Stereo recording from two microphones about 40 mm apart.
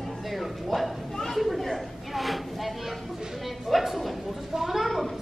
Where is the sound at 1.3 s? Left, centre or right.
Centre.